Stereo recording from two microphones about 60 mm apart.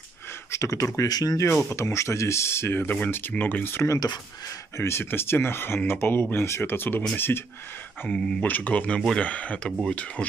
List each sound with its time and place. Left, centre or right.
0.5 s speech: left
1.8 s speech: left
3.1 s speech: left
6.6 s speech: left
8.1 s speech: centre